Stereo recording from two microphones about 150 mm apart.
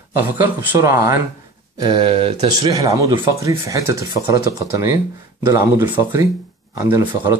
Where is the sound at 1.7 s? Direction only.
30° right (ahead or behind).